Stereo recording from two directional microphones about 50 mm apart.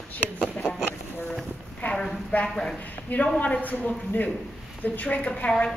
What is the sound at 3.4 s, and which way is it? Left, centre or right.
A man's voice, left.